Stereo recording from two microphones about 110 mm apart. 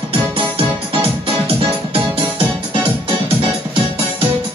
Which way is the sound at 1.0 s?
60° right (ahead or behind).